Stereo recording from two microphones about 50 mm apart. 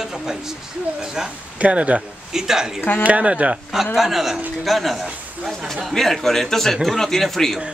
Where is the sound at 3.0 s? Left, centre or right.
Right.